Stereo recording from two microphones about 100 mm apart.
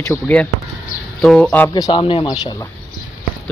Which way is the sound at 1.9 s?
55° left (ahead or behind).